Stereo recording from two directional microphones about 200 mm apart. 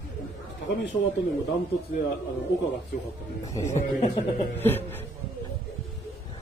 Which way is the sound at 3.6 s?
35° left (ahead or behind).